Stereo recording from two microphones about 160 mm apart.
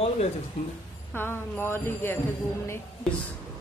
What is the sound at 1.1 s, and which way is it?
A woman's voice, 15° left (ahead or behind).